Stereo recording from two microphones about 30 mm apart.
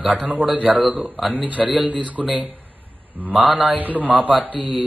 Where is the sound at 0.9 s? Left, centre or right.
Right.